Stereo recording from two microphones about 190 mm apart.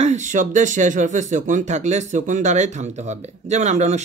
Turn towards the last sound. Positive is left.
turn(degrees=-35)  # may be behind; listen again after turning